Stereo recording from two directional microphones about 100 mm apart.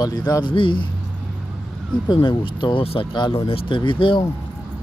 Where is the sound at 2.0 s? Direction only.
55° left (ahead or behind).